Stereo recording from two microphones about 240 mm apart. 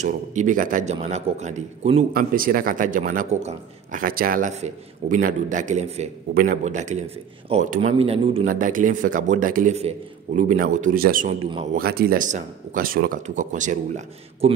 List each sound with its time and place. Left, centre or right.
0.0 s a man's voice: right
2.1 s a man's voice: right
8.5 s a man's voice: right